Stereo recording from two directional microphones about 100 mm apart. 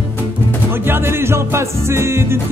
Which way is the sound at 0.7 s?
25° right (ahead or behind).